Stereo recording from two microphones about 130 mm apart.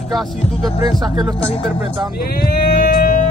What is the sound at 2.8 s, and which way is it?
Music, 90° left.